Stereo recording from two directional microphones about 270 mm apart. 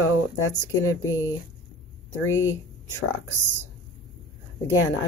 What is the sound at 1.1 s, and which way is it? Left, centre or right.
Speech, centre.